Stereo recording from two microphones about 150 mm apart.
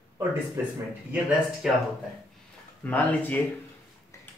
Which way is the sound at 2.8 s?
10° left (ahead or behind).